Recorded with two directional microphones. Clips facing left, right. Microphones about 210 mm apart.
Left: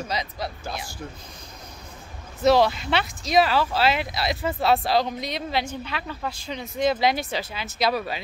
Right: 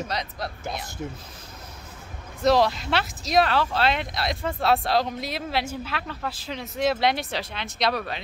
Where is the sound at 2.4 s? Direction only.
Centre (ahead or behind).